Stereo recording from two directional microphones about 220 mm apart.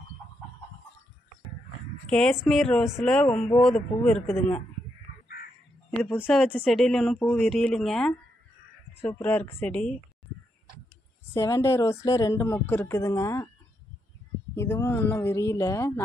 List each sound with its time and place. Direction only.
2.0 s speech: 5° left (ahead or behind)
3.3 s speech: 35° left (ahead or behind)
3.6 s speech: centre (ahead or behind)
5.9 s speech: 5° left (ahead or behind)
11.3 s speech: 15° left (ahead or behind)
14.5 s speech: 10° left (ahead or behind)